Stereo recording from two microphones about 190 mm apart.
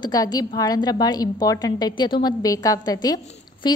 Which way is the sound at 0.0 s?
20° left (ahead or behind).